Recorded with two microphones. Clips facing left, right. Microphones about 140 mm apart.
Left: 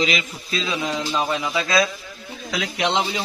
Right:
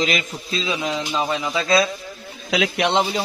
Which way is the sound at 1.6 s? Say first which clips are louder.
Right 2 dB; 25° right (ahead or behind).